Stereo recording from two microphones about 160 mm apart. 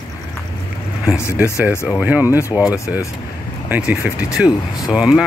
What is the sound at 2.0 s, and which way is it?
Speech, 10° right (ahead or behind).